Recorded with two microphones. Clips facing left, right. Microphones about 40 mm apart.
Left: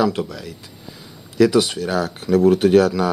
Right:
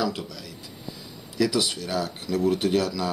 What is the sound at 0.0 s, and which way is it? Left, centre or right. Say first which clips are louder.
Speech: left 8 dB; left.